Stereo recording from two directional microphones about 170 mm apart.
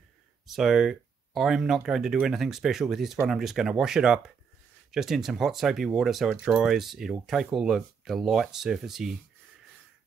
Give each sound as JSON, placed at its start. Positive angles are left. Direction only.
{"t": 0.5, "sound": "speech", "side_deg": 0}